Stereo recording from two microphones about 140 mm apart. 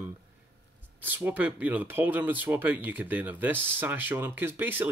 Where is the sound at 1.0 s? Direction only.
15° right (ahead or behind).